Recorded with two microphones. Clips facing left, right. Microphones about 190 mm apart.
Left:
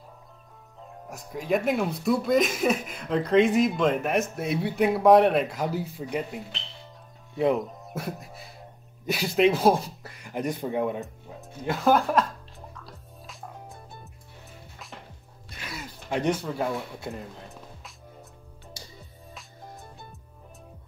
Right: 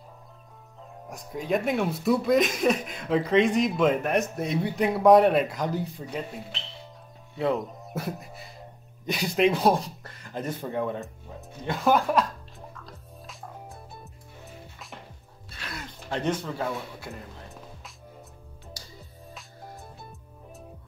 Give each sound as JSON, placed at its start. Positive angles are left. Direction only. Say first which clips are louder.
{"t": 1.0, "sound": "speech", "louder": "even", "side_deg": 0}
{"t": 7.5, "sound": "speech", "louder": "left 1 dB", "side_deg": 0}
{"t": 11.4, "sound": "music", "louder": "left 1 dB", "side_deg": 0}
{"t": 15.5, "sound": "a sound", "louder": "even", "side_deg": 10}
{"t": 19.3, "sound": "music", "louder": "even", "side_deg": 0}